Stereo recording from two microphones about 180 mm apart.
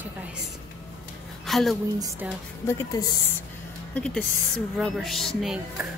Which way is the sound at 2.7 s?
15° left (ahead or behind).